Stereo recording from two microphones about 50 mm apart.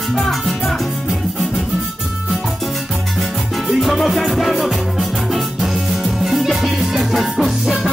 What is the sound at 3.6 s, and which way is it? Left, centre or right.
Music, centre.